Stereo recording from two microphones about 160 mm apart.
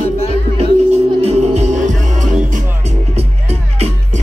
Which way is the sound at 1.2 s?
45° right (ahead or behind).